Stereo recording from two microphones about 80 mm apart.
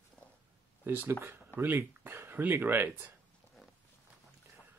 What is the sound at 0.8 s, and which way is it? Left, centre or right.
Speech, right.